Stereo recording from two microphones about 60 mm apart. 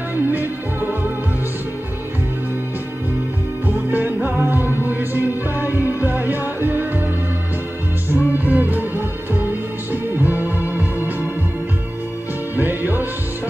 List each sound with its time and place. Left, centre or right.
0.1 s music: right
3.6 s music: right
8.1 s music: left
8.4 s music: right
12.5 s music: right